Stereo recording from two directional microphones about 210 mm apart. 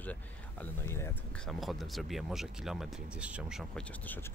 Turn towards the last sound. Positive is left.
turn(degrees=10)  # may be behind; listen again after turning